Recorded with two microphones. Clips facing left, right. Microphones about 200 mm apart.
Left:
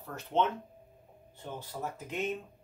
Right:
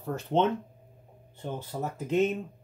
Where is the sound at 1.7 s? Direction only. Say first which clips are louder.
Right 4 dB; 35° right (ahead or behind).